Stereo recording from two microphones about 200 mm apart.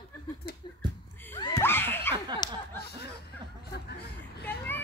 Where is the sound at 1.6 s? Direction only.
10° left (ahead or behind).